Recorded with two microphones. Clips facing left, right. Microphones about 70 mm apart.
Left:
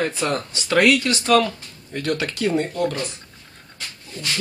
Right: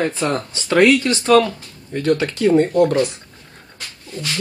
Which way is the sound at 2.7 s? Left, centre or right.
Right.